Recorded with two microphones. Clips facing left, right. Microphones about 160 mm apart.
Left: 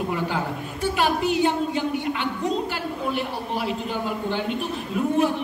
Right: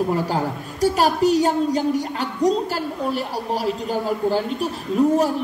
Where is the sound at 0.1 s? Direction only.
40° right (ahead or behind).